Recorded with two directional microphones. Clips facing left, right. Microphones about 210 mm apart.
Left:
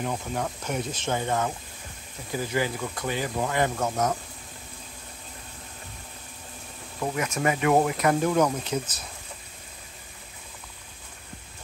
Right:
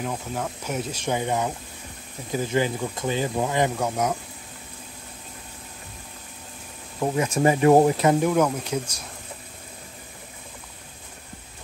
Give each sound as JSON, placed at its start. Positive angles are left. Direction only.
{"t": 0.0, "sound": "speech", "side_deg": 0}
{"t": 7.0, "sound": "speech", "side_deg": -30}
{"t": 8.3, "sound": "speech", "side_deg": -5}